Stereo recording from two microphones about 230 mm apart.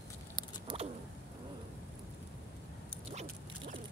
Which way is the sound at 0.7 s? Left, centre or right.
Right.